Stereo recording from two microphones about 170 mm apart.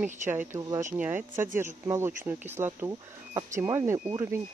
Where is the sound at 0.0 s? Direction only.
10° right (ahead or behind).